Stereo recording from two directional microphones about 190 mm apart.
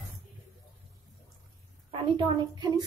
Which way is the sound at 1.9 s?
25° right (ahead or behind).